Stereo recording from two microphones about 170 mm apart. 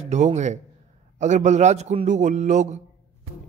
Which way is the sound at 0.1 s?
45° right (ahead or behind).